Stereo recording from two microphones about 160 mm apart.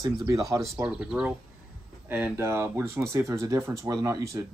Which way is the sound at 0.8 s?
5° right (ahead or behind).